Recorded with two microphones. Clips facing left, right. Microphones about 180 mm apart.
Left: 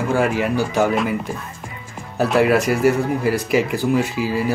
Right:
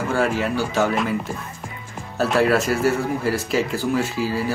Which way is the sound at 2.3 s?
10° left (ahead or behind).